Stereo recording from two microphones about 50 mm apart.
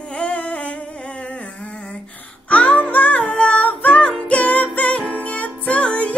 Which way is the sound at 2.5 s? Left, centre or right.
Left.